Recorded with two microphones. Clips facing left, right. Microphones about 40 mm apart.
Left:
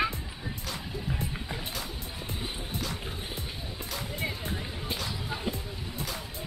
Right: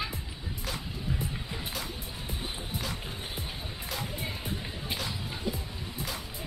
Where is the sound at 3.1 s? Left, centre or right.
Right.